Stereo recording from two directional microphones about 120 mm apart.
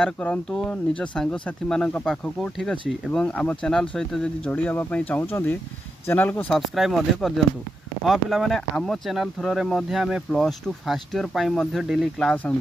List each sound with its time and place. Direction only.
0.2 s speech: 5° left (ahead or behind)
6.5 s speech: centre (ahead or behind)